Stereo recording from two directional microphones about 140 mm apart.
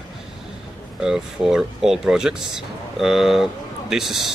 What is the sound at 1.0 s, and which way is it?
Speech, 5° right (ahead or behind).